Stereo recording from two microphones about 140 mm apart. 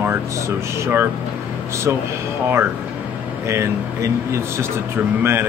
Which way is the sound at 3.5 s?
20° right (ahead or behind).